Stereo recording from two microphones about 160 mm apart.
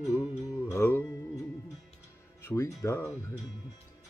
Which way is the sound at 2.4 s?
20° left (ahead or behind).